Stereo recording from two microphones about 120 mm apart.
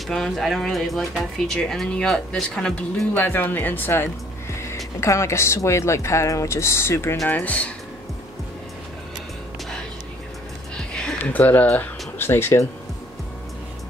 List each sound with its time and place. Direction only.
0.0 s speech: centre (ahead or behind)
3.2 s speech: 15° left (ahead or behind)
10.9 s a sound: 5° left (ahead or behind)